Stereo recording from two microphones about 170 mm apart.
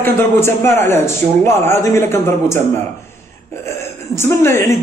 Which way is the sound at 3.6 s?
15° left (ahead or behind).